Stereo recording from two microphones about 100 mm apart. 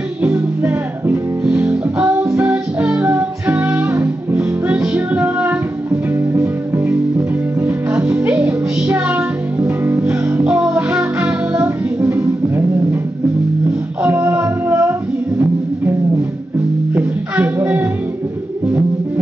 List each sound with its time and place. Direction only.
0.3 s music: 20° right (ahead or behind)
8.4 s music: 25° right (ahead or behind)
12.0 s music: 25° right (ahead or behind)
14.0 s child singing: 25° right (ahead or behind)